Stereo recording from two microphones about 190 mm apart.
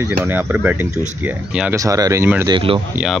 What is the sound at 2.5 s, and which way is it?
Speech, 30° right (ahead or behind).